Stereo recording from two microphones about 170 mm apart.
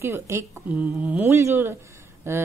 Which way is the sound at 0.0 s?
15° right (ahead or behind).